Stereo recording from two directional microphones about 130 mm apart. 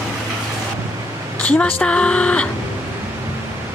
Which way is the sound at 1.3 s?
10° left (ahead or behind).